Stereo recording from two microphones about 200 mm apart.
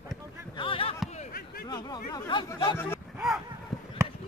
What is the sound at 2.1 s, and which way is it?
Speech, 20° left (ahead or behind).